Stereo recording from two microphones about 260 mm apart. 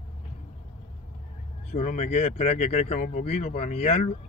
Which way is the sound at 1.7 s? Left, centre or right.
Left.